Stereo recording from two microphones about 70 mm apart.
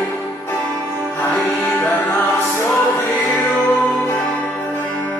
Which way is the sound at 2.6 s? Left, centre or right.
Left.